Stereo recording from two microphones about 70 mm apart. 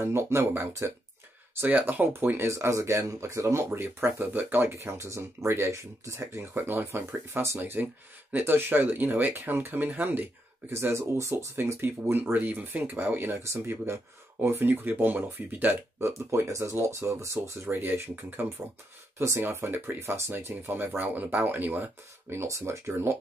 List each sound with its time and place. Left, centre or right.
0.0 s speech: right
13.4 s speech: right
16.1 s speech: right
17.6 s speech: right
19.1 s speech: right
22.3 s speech: right